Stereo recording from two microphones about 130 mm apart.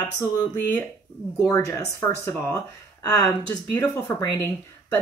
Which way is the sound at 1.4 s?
25° left (ahead or behind).